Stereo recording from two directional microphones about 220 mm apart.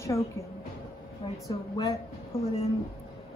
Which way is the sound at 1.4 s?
15° left (ahead or behind).